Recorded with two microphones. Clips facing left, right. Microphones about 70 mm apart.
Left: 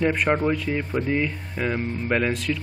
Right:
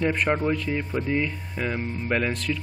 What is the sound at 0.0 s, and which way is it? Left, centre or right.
A man's voice, centre.